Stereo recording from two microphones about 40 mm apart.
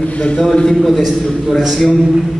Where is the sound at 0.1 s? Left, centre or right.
Left.